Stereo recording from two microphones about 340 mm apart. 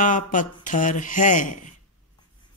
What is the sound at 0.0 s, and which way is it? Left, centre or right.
Music, left.